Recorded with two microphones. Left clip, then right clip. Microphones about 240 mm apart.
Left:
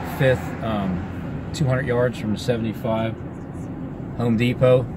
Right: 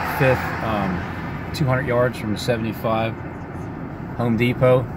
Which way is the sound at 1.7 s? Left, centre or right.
Centre.